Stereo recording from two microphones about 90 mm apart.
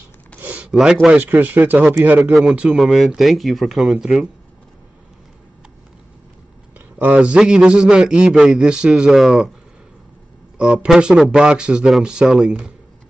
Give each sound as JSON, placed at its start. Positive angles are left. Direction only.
{"t": 0.4, "sound": "a sound", "side_deg": -15}
{"t": 1.2, "sound": "speech", "side_deg": -20}
{"t": 2.7, "sound": "speech", "side_deg": 0}
{"t": 7.0, "sound": "a man's voice", "side_deg": -15}
{"t": 10.6, "sound": "a man's voice", "side_deg": -5}